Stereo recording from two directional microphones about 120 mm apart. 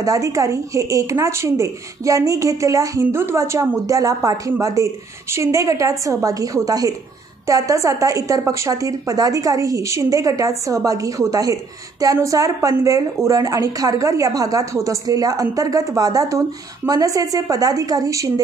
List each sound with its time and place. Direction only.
0.0 s a woman's voice: 30° right (ahead or behind)